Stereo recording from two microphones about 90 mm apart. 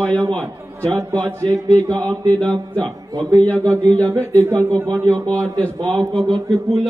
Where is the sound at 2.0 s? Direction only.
15° left (ahead or behind).